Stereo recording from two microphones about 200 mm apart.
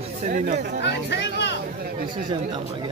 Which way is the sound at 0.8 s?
60° left (ahead or behind).